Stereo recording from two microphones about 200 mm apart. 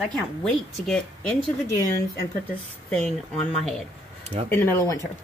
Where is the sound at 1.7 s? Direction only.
15° left (ahead or behind).